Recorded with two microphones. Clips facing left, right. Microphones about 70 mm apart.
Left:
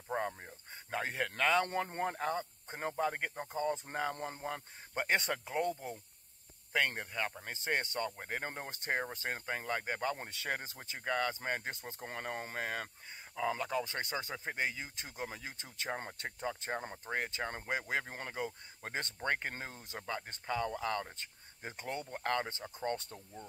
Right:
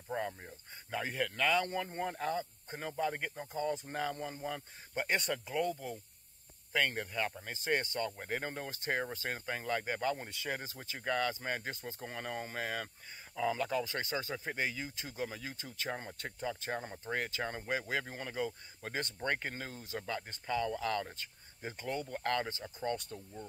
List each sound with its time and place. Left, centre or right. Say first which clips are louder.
0.8 s speech: even; left
1.7 s speech: left 2 dB; left
7.0 s speech: right 2 dB; centre
7.7 s speech: right 1 dB; left
8.2 s speech: right 2 dB; centre
9.1 s speech: even; left